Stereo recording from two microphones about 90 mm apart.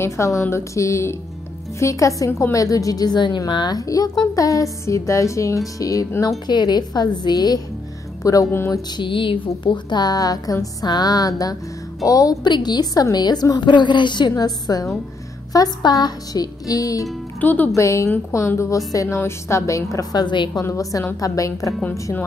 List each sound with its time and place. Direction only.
0.0 s a woman's voice: 30° left (ahead or behind)
6.4 s a woman's voice: 55° left (ahead or behind)
8.2 s a woman's voice: 40° left (ahead or behind)
8.9 s speech: 65° left (ahead or behind)
9.7 s a woman's voice: 55° left (ahead or behind)
14.3 s a woman's voice: 45° left (ahead or behind)
17.4 s speech: 20° left (ahead or behind)
17.7 s a woman's voice: 35° left (ahead or behind); by 20.6 s 55° left (ahead or behind)
20.6 s a woman's voice: 40° left (ahead or behind)